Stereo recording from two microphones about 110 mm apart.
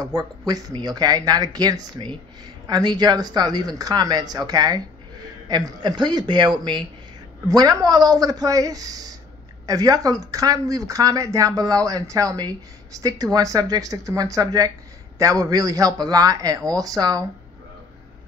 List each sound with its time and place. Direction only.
0.0 s speech: 35° right (ahead or behind)
7.4 s speech: 35° right (ahead or behind)